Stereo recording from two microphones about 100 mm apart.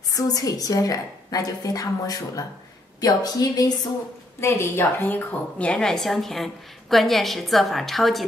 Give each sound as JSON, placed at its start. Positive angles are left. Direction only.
{"t": 0.1, "sound": "a woman's voice", "side_deg": 35}
{"t": 4.4, "sound": "a woman's voice", "side_deg": 25}